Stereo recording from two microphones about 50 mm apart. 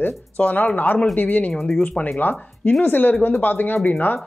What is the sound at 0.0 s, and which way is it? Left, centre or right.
Speech, left.